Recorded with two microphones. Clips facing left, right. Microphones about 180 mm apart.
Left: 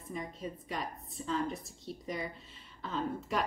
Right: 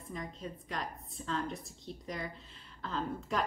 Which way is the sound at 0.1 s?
5° left (ahead or behind).